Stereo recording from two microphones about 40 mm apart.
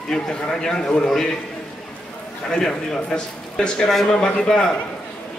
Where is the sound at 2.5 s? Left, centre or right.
Centre.